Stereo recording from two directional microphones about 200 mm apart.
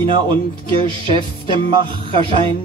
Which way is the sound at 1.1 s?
25° right (ahead or behind).